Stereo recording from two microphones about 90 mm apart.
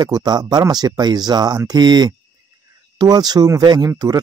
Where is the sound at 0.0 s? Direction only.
50° right (ahead or behind).